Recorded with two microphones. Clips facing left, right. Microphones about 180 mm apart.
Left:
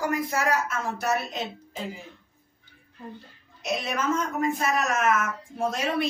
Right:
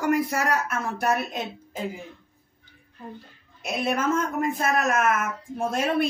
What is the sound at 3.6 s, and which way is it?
Speech, 50° right (ahead or behind).